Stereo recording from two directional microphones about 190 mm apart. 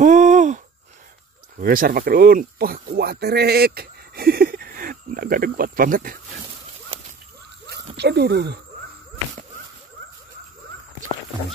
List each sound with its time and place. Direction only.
0.0 s a sound: 40° right (ahead or behind)
1.6 s speech: 50° right (ahead or behind)
7.7 s speech: 60° right (ahead or behind)